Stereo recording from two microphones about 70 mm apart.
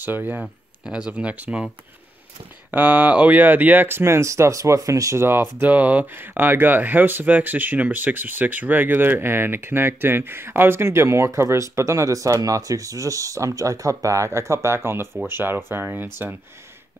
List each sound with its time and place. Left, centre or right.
0.0 s speech: right
0.4 s speech: centre
2.7 s speech: right
5.2 s speech: right